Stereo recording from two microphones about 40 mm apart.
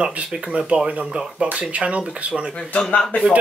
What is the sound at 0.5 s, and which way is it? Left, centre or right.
Speech, right.